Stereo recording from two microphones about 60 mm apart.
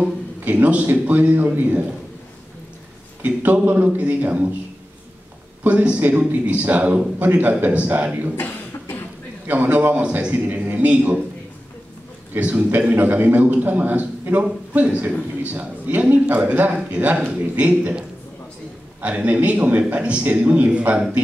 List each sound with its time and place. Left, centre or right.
0.4 s a man's voice: right
3.2 s a man's voice: right
5.6 s a man's voice: right
8.4 s cough: left
9.5 s a man's voice: right
12.4 s a man's voice: right